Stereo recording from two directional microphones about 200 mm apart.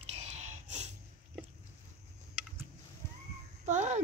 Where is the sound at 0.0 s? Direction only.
35° right (ahead or behind).